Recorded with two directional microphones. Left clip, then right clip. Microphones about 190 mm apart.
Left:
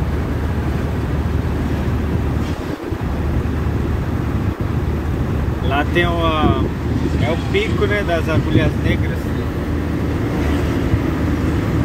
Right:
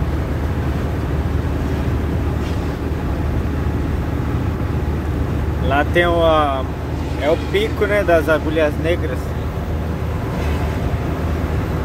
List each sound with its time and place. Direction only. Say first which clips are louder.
5.7 s speech: right 2 dB; 15° right (ahead or behind)
7.9 s speech: right 4 dB; 25° right (ahead or behind)